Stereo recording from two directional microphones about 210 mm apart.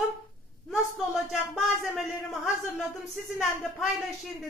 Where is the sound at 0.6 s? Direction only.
Centre (ahead or behind).